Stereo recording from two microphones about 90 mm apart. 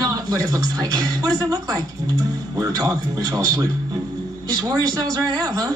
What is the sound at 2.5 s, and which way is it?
Speech, 40° right (ahead or behind).